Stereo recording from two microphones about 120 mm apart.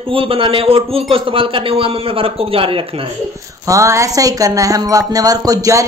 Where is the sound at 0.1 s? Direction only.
50° right (ahead or behind).